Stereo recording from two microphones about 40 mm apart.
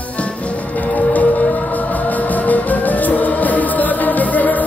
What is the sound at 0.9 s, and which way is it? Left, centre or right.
Music, left.